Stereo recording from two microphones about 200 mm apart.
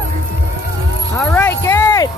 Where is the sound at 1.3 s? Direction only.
10° left (ahead or behind).